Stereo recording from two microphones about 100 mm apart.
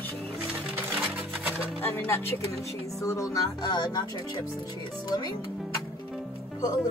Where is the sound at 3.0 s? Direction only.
35° left (ahead or behind).